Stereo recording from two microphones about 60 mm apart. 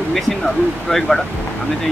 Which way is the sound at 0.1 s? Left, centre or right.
Centre.